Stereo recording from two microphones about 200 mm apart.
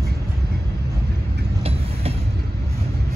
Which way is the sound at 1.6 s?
30° right (ahead or behind).